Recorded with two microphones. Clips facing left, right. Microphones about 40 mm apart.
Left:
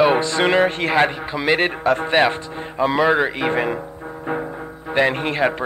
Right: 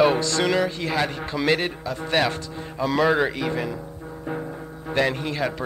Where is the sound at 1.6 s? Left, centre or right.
Left.